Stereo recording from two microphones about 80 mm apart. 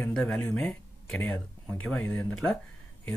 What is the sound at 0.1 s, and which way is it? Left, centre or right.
Speech, centre.